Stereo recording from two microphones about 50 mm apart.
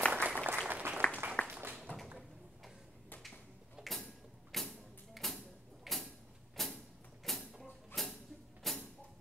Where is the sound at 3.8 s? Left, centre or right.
Centre.